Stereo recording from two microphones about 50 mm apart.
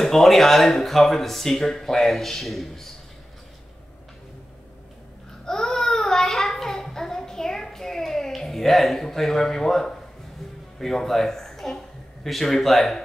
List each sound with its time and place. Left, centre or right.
0.0 s speech: centre
5.4 s child singing: centre
10.8 s speech: centre